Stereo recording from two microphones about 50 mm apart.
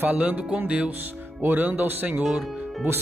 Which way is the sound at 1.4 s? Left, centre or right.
Right.